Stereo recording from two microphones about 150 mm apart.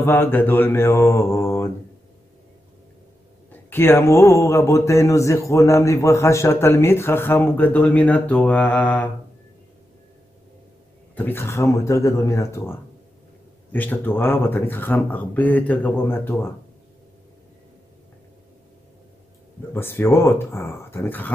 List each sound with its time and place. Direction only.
0.0 s a man's voice: 15° left (ahead or behind)
3.7 s a man's voice: 15° left (ahead or behind)
11.1 s a man's voice: 15° left (ahead or behind)
19.7 s a man's voice: 15° left (ahead or behind)